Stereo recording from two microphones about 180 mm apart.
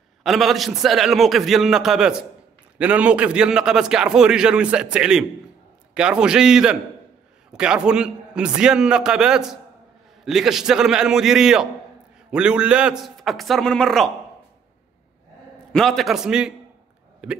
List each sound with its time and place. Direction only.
0.2 s a man's voice: centre (ahead or behind)
15.7 s a man's voice: centre (ahead or behind)